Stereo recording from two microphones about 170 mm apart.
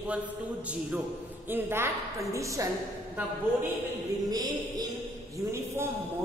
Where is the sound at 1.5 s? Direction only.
15° right (ahead or behind).